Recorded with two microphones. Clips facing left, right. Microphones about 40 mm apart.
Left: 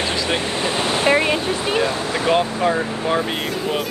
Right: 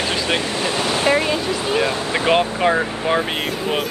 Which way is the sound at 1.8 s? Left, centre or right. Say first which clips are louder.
Right 1 dB; right.